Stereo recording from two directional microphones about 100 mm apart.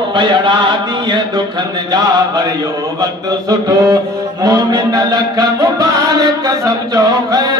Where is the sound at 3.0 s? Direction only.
40° right (ahead or behind).